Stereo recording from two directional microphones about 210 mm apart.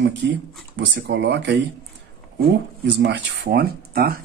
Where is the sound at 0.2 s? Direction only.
55° right (ahead or behind).